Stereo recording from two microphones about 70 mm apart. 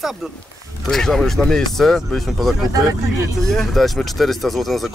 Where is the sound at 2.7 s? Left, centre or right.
Right.